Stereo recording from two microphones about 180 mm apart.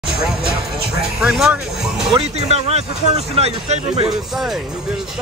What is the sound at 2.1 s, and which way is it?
Speech, 35° right (ahead or behind).